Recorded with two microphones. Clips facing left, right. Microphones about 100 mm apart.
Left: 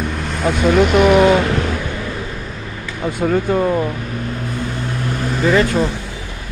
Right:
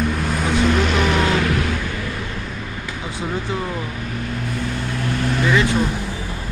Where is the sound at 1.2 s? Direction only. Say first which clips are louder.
Left 6 dB; 25° left (ahead or behind).